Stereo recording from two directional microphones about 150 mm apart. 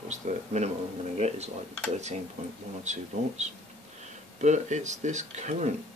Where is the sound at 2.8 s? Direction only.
50° right (ahead or behind).